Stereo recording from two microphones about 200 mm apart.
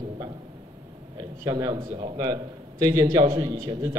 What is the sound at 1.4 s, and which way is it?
A man's voice, 20° right (ahead or behind).